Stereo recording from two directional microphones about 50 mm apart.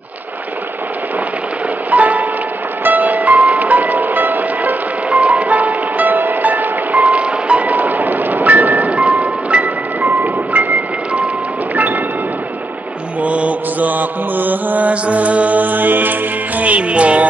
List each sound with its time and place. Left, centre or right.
1.9 s music: right
5.1 s music: right
13.2 s mantra: right